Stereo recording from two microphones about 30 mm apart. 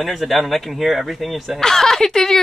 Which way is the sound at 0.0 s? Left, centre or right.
Centre.